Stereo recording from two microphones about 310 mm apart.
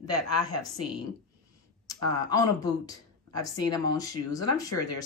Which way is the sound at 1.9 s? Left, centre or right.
Centre.